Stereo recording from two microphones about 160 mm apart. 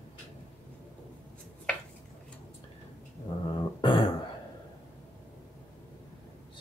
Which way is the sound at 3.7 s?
30° left (ahead or behind).